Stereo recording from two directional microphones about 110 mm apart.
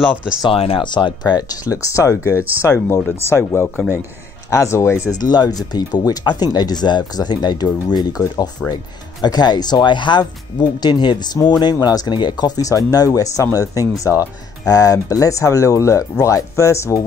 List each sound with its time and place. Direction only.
0.4 s speech: 55° left (ahead or behind); by 3.6 s 25° left (ahead or behind)
3.6 s a man's voice: 5° left (ahead or behind)
4.5 s speech: 25° left (ahead or behind)
5.2 s speech: 40° left (ahead or behind)